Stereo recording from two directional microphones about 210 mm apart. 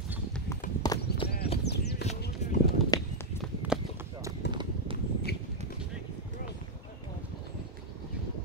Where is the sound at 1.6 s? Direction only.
50° left (ahead or behind).